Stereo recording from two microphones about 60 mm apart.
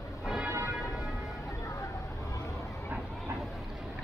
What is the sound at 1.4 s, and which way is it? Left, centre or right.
Hubbub, left.